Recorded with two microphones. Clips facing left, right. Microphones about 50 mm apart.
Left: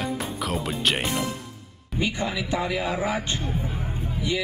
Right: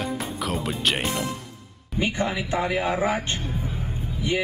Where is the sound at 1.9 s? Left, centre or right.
Right.